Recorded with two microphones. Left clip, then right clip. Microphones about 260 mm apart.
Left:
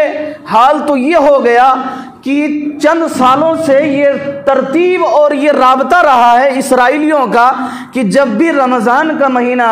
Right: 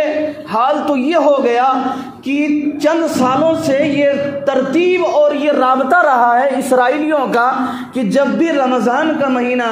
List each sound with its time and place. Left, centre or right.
0.6 s a man's voice: left